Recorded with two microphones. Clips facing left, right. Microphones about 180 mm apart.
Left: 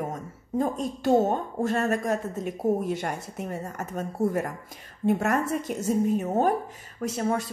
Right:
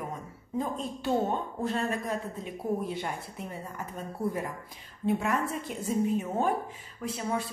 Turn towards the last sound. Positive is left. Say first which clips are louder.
# left 5 dB
turn(degrees=45)  # may be behind; listen again after turning